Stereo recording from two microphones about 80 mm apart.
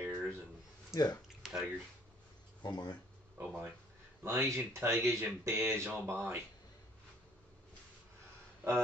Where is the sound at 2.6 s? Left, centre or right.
Left.